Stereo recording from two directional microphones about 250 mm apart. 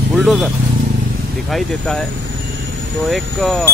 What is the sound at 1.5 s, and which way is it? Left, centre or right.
Speech, centre.